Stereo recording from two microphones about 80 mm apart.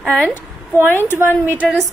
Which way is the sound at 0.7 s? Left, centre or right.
Left.